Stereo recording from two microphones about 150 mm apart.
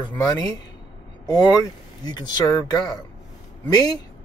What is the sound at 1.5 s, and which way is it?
Speech, 25° left (ahead or behind).